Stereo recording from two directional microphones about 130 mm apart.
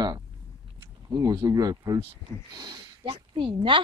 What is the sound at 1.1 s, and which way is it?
Speech, 25° right (ahead or behind).